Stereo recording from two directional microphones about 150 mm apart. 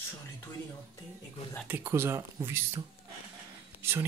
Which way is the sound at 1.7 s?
15° right (ahead or behind).